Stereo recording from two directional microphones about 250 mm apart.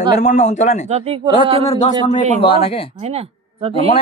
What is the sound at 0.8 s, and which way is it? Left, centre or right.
Speech, right.